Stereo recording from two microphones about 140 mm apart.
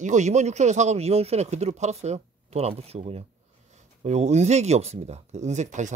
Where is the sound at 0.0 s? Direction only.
55° right (ahead or behind).